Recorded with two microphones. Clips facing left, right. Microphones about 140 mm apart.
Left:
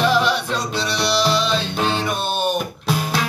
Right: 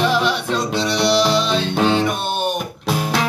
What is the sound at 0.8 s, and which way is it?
Music, 20° right (ahead or behind).